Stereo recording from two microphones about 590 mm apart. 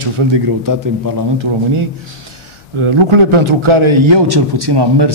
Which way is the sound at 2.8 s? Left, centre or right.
Right.